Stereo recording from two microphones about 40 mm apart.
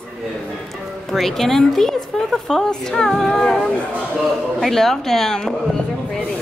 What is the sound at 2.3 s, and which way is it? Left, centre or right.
A woman's voice, centre.